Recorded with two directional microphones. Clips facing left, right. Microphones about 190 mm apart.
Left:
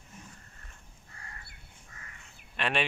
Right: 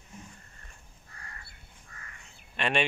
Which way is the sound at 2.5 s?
Centre (ahead or behind).